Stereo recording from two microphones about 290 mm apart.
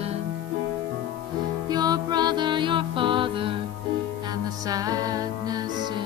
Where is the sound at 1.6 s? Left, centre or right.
Centre.